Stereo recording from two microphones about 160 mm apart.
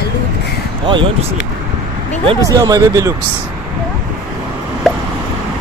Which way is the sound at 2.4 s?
20° right (ahead or behind).